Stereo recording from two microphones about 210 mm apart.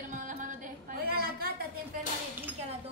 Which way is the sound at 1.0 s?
45° right (ahead or behind).